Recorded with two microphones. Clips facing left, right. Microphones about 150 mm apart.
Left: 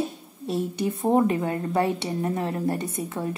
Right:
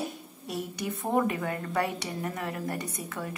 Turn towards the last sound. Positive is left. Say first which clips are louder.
# left 7 dB
turn(degrees=30)  # may be behind; listen again after turning